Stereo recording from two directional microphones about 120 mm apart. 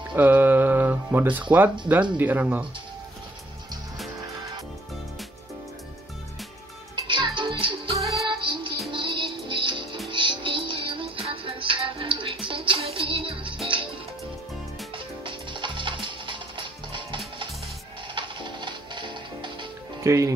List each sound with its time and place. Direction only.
0.1 s mantra: 15° right (ahead or behind)
1.5 s speech: 15° right (ahead or behind)
7.1 s music: 40° right (ahead or behind)
8.0 s music: centre (ahead or behind)
8.3 s music: 45° right (ahead or behind)
15.0 s music: 45° right (ahead or behind)
20.0 s music: 25° right (ahead or behind)